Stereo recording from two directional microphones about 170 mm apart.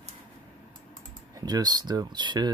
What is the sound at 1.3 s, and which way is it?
Speech, 20° right (ahead or behind).